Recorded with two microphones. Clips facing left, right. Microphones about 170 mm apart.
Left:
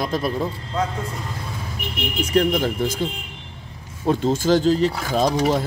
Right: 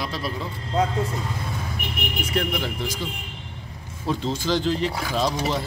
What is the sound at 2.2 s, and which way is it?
Speech, 40° left (ahead or behind).